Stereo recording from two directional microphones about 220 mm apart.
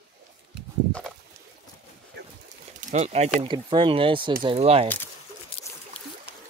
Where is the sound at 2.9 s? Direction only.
30° right (ahead or behind).